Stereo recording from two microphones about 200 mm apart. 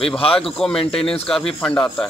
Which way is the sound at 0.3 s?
5° left (ahead or behind).